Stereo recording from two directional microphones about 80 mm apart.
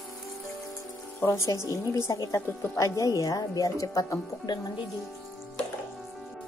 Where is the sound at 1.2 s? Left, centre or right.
Left.